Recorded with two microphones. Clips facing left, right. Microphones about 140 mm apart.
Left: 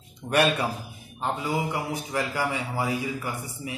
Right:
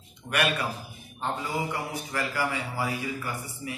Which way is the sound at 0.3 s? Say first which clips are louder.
Left 5 dB; 30° left (ahead or behind).